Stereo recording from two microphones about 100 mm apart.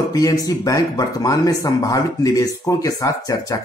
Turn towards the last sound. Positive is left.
turn(degrees=35)  # may be behind; listen again after turning